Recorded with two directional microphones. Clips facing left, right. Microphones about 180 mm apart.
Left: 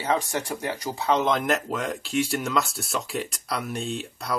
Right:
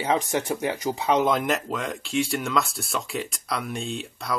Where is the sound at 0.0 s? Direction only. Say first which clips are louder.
Right 2 dB; 15° right (ahead or behind).